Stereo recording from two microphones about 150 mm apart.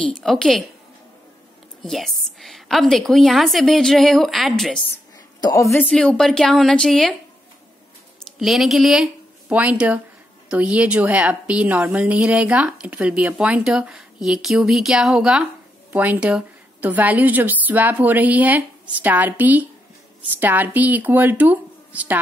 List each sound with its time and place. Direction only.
0.0 s a woman's voice: centre (ahead or behind)
1.8 s a woman's voice: centre (ahead or behind)
5.4 s a woman's voice: 20° left (ahead or behind)
5.9 s a woman's voice: 5° left (ahead or behind)
8.4 s a woman's voice: centre (ahead or behind)